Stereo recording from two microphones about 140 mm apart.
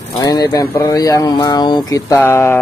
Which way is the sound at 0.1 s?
25° left (ahead or behind).